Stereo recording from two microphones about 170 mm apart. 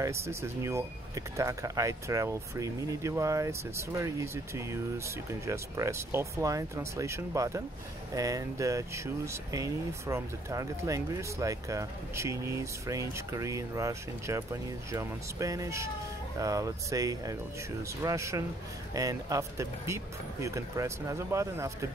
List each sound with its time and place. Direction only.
0.0 s speech: 15° right (ahead or behind)